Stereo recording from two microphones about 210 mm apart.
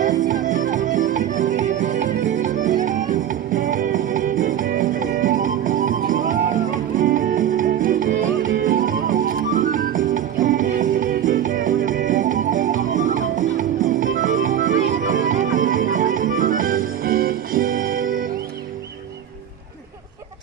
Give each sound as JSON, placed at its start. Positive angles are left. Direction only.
{"t": 0.0, "sound": "music", "side_deg": -40}